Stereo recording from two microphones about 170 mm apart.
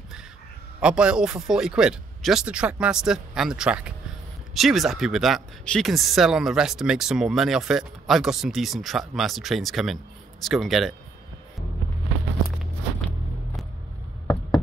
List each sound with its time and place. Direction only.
0.7 s speech: 5° right (ahead or behind)
14.2 s knock: 25° left (ahead or behind)